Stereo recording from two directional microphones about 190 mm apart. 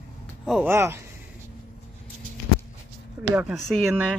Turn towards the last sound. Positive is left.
turn(degrees=0)  # may be behind; listen again after turning